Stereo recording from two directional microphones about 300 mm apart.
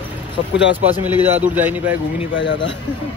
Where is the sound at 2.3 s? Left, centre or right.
Left.